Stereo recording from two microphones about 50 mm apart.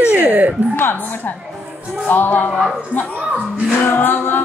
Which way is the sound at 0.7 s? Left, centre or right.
Left.